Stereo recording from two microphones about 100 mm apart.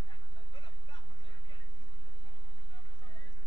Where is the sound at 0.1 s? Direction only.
65° left (ahead or behind).